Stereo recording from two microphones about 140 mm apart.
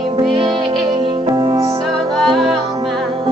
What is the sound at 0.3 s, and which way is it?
Music, 40° right (ahead or behind).